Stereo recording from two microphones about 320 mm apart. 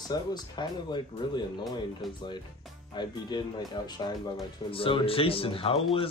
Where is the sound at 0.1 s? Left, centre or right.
Centre.